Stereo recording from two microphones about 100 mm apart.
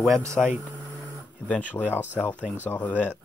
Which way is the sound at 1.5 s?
15° left (ahead or behind).